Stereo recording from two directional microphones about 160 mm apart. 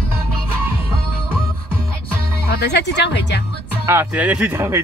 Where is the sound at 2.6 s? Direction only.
90° left.